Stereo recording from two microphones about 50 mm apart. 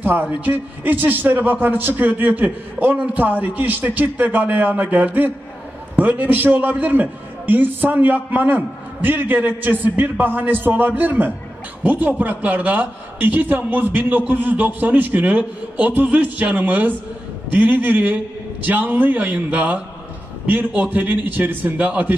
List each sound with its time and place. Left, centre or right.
0.0 s a man's voice: right